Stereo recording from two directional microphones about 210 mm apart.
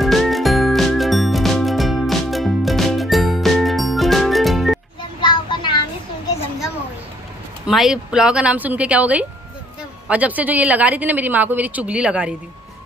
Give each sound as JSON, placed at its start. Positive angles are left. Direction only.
{"t": 0.0, "sound": "music", "side_deg": 0}
{"t": 5.2, "sound": "a sound", "side_deg": 20}
{"t": 7.6, "sound": "a woman's voice", "side_deg": -5}